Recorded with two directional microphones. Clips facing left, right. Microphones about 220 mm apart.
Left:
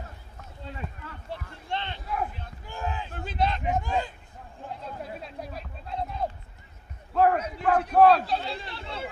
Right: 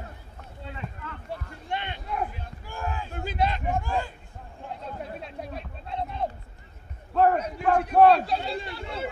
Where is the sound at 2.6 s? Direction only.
20° left (ahead or behind).